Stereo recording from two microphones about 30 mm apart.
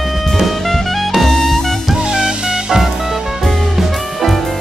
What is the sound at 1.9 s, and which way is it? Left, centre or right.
Music, right.